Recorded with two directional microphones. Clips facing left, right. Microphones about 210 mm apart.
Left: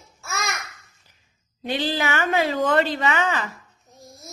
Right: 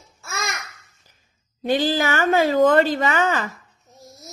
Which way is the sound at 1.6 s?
45° right (ahead or behind).